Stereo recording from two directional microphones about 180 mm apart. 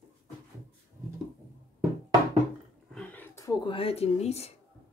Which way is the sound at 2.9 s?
10° left (ahead or behind).